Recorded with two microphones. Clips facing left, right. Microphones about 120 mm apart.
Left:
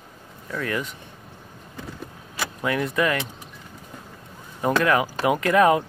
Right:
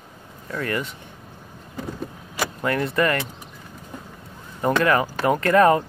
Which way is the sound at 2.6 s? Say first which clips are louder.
Right 1 dB; centre (ahead or behind).